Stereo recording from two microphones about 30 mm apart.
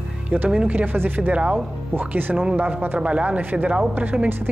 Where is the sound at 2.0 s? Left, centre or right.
Right.